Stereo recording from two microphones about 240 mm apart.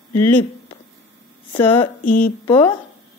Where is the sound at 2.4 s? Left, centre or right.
Left.